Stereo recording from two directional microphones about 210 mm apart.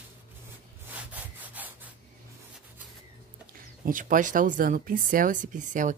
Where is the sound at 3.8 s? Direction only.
40° right (ahead or behind).